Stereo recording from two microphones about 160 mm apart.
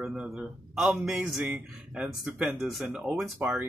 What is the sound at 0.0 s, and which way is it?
Speech, 5° right (ahead or behind).